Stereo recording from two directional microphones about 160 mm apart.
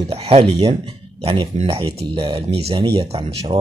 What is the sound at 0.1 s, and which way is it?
Speech, 40° right (ahead or behind).